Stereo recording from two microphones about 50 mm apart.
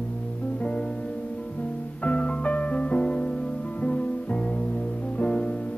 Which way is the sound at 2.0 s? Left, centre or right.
Left.